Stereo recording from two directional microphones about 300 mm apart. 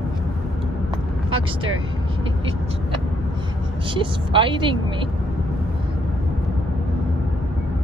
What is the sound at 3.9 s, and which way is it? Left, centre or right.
A woman's voice, centre.